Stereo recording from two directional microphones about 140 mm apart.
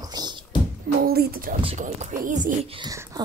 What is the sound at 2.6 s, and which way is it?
Speech, 40° right (ahead or behind).